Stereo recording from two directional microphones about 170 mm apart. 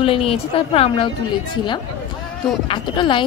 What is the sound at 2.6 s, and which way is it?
Speech, 25° left (ahead or behind).